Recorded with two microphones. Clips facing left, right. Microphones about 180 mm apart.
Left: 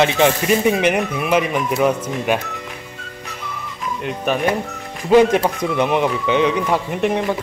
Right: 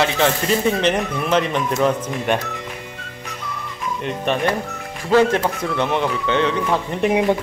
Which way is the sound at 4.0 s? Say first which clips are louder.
Left 1 dB; 5° left (ahead or behind).